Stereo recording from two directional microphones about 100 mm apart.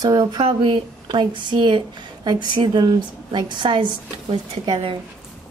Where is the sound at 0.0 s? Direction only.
40° right (ahead or behind).